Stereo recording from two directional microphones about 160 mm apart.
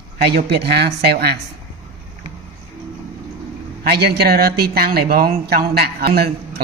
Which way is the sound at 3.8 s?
85° right.